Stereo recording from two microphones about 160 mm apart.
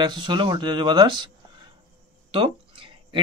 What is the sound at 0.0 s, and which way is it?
Speech, 30° right (ahead or behind).